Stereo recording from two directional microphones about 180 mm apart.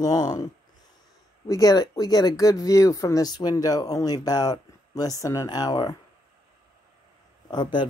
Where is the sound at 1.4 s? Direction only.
20° left (ahead or behind).